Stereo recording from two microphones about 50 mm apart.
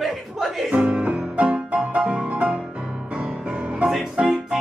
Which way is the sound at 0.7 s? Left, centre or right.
Right.